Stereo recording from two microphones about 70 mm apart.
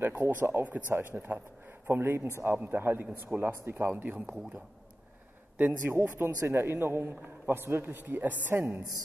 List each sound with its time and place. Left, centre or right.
0.3 s a man's voice: right
5.6 s a man's voice: right